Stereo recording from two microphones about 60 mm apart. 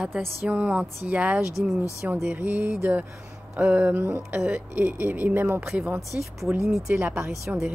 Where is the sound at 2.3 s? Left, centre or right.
Right.